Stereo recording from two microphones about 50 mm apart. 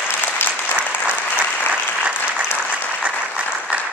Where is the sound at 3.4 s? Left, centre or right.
Right.